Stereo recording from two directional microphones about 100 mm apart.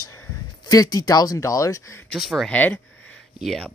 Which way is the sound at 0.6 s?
40° left (ahead or behind).